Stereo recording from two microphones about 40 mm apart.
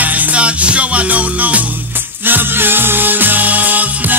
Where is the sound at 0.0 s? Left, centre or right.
Right.